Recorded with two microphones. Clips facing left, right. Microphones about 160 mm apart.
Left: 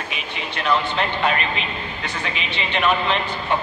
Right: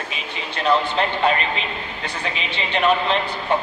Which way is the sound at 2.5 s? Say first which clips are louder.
Right 2 dB; 35° right (ahead or behind).